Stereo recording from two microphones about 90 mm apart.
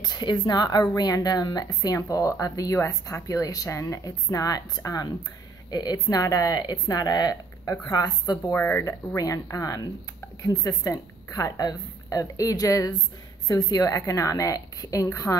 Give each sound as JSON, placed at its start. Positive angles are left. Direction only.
{"t": 0.0, "sound": "a woman's voice", "side_deg": 55}
{"t": 8.5, "sound": "speech", "side_deg": 20}
{"t": 8.8, "sound": "a woman's voice", "side_deg": 40}
{"t": 15.3, "sound": "speech", "side_deg": 25}